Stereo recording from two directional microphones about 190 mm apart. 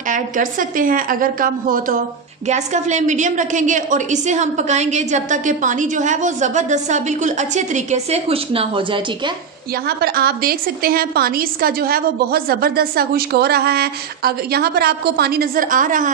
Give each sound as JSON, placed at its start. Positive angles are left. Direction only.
{"t": 0.1, "sound": "a woman's voice", "side_deg": -45}
{"t": 9.8, "sound": "a woman's voice", "side_deg": -55}